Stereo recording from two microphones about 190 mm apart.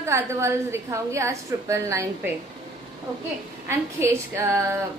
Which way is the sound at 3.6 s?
15° right (ahead or behind).